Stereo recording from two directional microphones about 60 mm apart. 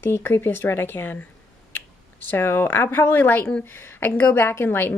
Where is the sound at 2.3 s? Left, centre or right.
Left.